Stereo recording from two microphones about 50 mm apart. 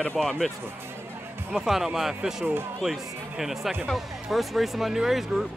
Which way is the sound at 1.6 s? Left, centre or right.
Centre.